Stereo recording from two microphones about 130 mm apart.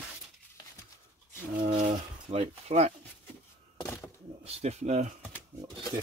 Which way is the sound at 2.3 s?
55° right (ahead or behind).